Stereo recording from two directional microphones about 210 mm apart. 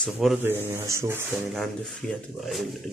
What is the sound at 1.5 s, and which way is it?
Speech, centre (ahead or behind).